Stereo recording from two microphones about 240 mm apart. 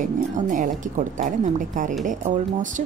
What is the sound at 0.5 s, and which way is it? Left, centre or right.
Speech, right.